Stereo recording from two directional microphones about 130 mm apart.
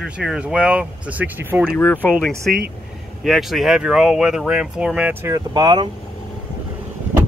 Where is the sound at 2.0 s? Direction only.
10° left (ahead or behind).